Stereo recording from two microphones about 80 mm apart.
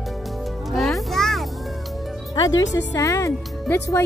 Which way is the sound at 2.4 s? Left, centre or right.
Left.